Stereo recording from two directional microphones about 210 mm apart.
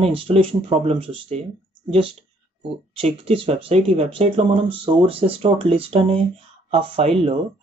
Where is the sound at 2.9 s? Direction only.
25° right (ahead or behind).